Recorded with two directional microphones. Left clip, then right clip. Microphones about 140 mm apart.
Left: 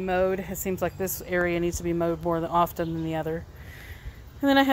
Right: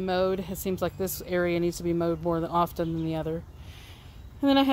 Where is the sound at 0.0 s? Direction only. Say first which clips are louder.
Left 2 dB; 30° right (ahead or behind).